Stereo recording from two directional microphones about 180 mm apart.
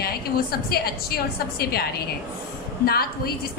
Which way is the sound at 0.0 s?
60° left (ahead or behind).